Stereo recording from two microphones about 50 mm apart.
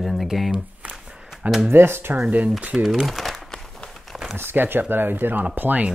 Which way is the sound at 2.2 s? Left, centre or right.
Right.